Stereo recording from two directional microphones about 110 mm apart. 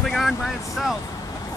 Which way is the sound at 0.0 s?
5° left (ahead or behind).